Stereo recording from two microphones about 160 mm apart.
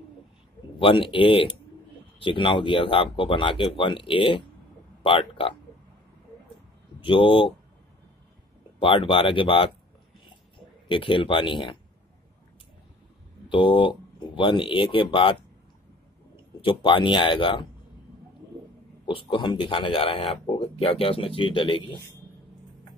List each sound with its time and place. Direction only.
0.7 s speech: 30° left (ahead or behind)
7.0 s speech: 35° left (ahead or behind)
8.7 s speech: 35° left (ahead or behind)
10.9 s speech: 30° left (ahead or behind)
13.5 s speech: 30° left (ahead or behind)
16.6 s speech: 30° left (ahead or behind)
19.0 s speech: 30° left (ahead or behind)